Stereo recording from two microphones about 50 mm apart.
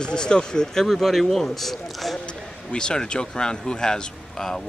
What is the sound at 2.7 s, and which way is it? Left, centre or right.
Speech, centre.